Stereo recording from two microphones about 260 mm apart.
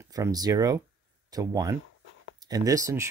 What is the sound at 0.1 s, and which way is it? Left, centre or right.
Speech, centre.